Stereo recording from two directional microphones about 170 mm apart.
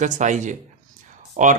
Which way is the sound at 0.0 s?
45° right (ahead or behind).